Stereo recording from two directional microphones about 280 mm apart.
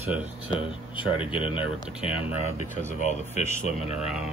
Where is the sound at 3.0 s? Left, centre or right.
Left.